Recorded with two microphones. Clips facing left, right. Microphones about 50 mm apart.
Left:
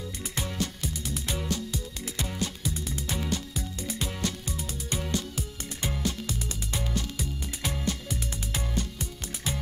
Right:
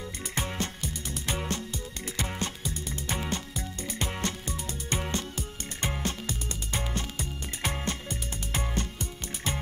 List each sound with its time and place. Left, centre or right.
0.4 s music: right
4.9 s music: right